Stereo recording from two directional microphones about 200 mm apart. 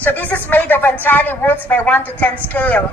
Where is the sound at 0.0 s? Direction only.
10° left (ahead or behind).